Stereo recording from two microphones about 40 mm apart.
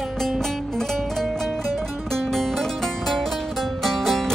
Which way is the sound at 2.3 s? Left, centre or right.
Centre.